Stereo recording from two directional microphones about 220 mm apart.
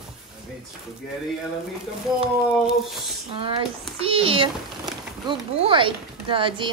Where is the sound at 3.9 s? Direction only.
25° right (ahead or behind).